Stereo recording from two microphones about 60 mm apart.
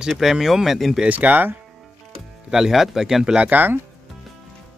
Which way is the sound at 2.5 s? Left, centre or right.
Centre.